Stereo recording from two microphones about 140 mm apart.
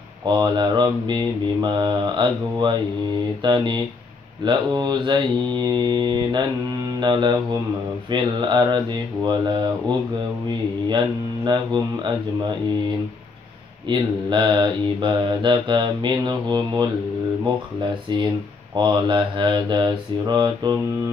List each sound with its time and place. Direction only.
0.2 s mantra: 30° right (ahead or behind)
13.8 s mantra: 35° right (ahead or behind)
18.8 s mantra: 35° right (ahead or behind)